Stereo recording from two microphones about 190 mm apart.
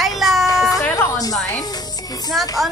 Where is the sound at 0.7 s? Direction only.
15° left (ahead or behind).